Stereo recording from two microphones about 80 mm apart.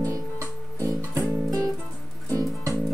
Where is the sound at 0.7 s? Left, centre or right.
Right.